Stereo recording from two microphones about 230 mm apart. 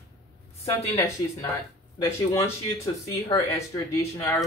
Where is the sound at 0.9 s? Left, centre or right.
Centre.